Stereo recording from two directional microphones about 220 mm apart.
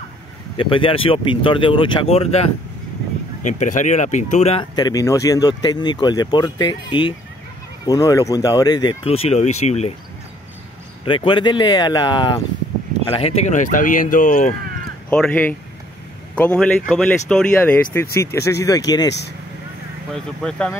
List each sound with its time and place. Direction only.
0.6 s speech: 25° left (ahead or behind)
3.4 s speech: 35° left (ahead or behind)
11.1 s speech: 20° left (ahead or behind)
15.0 s speech: 5° left (ahead or behind)
20.4 s speech: 5° left (ahead or behind)